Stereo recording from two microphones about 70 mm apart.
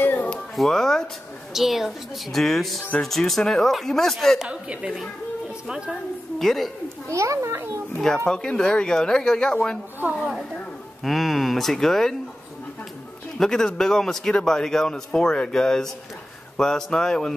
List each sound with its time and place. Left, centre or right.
0.0 s a sound: left
0.6 s a man's voice: centre
4.5 s a woman's voice: centre
6.4 s speech: centre
7.1 s a child's voice: right
8.3 s a man's voice: centre
11.1 s speech: centre
13.4 s a man's voice: centre